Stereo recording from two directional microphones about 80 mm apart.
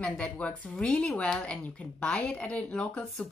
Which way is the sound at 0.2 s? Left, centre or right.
Centre.